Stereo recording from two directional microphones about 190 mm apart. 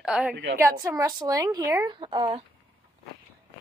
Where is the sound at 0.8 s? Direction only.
20° right (ahead or behind).